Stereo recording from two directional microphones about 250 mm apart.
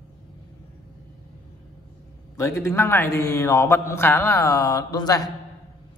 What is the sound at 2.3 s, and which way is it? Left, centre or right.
A man's voice, centre.